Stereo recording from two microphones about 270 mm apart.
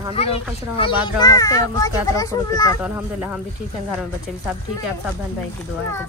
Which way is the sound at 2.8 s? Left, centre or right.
Centre.